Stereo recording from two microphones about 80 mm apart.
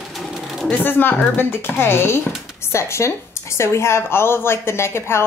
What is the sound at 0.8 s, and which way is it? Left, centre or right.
A woman's voice, left.